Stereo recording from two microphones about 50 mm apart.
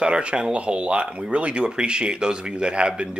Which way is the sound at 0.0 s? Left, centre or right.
Right.